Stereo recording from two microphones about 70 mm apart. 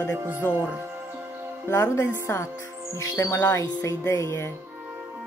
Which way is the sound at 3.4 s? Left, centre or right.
Left.